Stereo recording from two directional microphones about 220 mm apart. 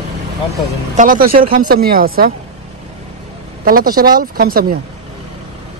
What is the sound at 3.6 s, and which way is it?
Speech, 40° right (ahead or behind).